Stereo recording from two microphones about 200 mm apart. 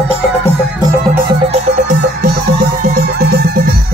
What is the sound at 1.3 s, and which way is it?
Music, 30° right (ahead or behind).